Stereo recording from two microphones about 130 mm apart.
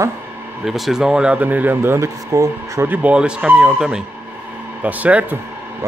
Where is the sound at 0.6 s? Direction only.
Centre (ahead or behind).